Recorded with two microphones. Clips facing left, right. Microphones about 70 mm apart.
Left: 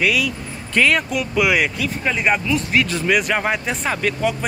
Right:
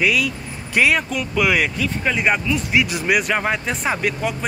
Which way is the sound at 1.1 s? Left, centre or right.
Centre.